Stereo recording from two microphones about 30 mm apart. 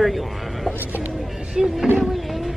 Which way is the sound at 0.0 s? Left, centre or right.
Centre.